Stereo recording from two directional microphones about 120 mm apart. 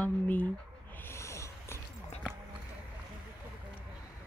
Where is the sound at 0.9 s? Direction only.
20° left (ahead or behind).